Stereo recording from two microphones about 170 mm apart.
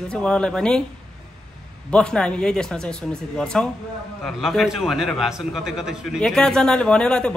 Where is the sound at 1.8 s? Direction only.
5° left (ahead or behind).